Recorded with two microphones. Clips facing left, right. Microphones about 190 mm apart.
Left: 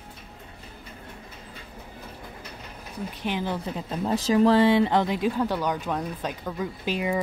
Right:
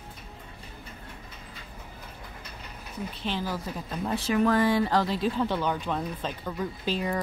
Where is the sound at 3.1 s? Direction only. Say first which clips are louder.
Left 3 dB; 15° left (ahead or behind).